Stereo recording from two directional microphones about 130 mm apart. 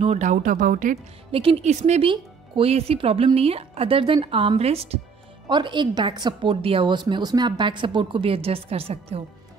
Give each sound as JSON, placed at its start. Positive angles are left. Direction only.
{"t": 0.0, "sound": "speech", "side_deg": -65}
{"t": 1.3, "sound": "speech", "side_deg": -45}
{"t": 2.0, "sound": "speech", "side_deg": -45}
{"t": 5.5, "sound": "speech", "side_deg": -35}